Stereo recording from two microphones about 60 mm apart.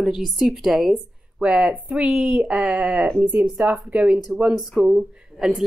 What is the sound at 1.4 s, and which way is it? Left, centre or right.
A woman's voice, centre.